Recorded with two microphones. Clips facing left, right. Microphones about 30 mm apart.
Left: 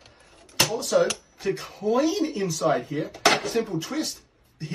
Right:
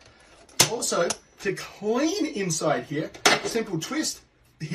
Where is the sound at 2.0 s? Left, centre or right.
Right.